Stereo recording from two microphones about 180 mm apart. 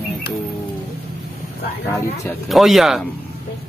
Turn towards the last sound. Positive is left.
turn(degrees=0)  # may be behind; listen again after turning